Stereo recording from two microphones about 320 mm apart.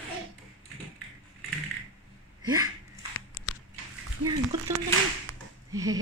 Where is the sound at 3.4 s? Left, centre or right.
Left.